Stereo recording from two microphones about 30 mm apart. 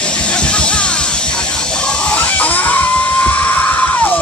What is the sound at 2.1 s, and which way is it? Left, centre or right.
Music, left.